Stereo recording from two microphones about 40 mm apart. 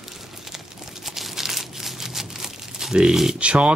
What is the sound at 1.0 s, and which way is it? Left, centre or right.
Crumpling, centre.